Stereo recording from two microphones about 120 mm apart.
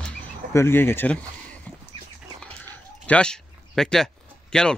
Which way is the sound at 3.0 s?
10° left (ahead or behind).